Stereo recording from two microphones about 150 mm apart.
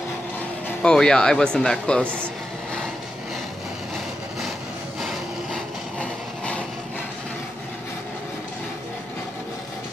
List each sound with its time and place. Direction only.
0.7 s speech: 5° left (ahead or behind)
5.0 s vehicle: 5° left (ahead or behind)